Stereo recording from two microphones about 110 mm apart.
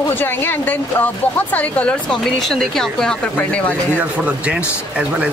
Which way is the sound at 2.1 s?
Centre (ahead or behind).